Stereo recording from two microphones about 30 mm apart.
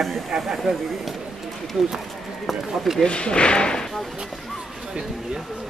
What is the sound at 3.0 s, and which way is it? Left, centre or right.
Speech, left.